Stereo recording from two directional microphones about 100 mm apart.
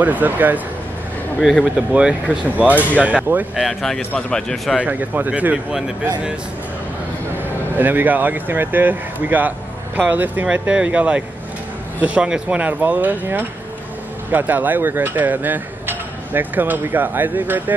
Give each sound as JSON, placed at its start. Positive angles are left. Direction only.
{"t": 0.0, "sound": "speech", "side_deg": -15}
{"t": 1.4, "sound": "speech", "side_deg": 0}
{"t": 1.9, "sound": "speech", "side_deg": -10}
{"t": 3.6, "sound": "a man's voice", "side_deg": 5}
{"t": 4.8, "sound": "speech", "side_deg": -15}
{"t": 7.7, "sound": "speech", "side_deg": -20}